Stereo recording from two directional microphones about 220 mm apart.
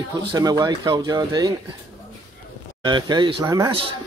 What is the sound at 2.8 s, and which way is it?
Speech, 20° right (ahead or behind).